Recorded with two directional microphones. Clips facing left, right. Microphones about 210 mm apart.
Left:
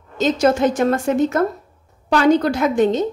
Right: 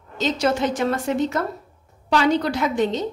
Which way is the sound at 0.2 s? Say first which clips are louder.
Left 5 dB; 45° left (ahead or behind).